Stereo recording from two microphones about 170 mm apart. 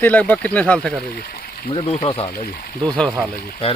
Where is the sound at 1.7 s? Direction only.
35° left (ahead or behind).